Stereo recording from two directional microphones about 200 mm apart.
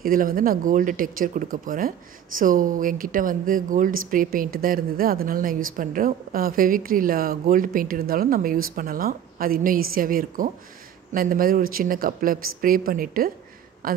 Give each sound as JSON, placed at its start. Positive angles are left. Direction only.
{"t": 0.0, "sound": "speech", "side_deg": -45}